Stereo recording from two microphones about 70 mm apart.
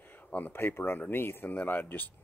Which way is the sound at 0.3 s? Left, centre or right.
Left.